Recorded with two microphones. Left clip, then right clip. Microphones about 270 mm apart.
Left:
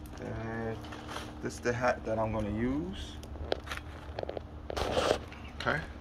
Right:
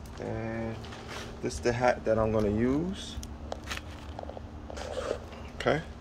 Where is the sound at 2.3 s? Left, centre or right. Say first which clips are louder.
Right 7 dB; centre.